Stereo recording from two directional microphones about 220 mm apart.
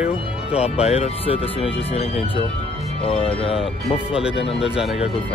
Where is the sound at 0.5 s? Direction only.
30° left (ahead or behind).